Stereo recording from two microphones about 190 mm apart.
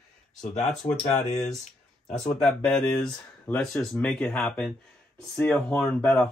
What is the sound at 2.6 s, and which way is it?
Speech, 5° left (ahead or behind).